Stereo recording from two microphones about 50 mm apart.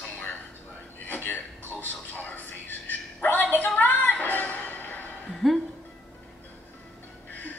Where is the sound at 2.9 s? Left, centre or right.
Left.